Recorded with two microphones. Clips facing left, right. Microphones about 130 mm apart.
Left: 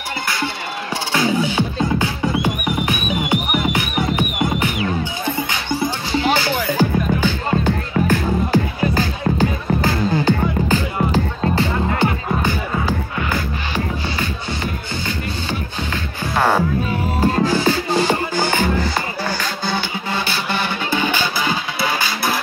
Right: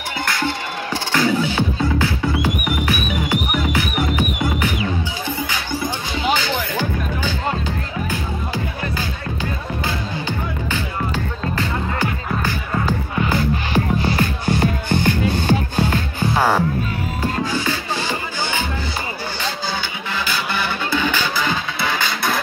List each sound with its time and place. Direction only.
1.1 s music: 15° left (ahead or behind)
6.8 s music: 50° left (ahead or behind); by 12.5 s 30° left (ahead or behind)
14.0 s music: 40° right (ahead or behind)
14.6 s music: 55° right (ahead or behind)
15.3 s music: 45° right (ahead or behind)
16.3 s music: centre (ahead or behind)
17.2 s music: 40° left (ahead or behind)
20.1 s music: 20° left (ahead or behind)